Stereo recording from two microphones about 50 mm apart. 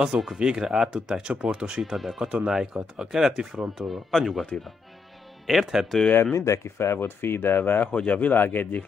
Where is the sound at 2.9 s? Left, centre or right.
Centre.